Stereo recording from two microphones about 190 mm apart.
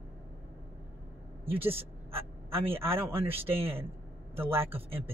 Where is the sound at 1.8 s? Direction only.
30° right (ahead or behind).